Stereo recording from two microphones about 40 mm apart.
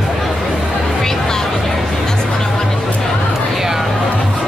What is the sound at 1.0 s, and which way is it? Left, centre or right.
Music, centre.